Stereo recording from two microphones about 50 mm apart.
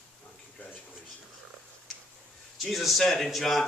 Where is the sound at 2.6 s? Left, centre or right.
Centre.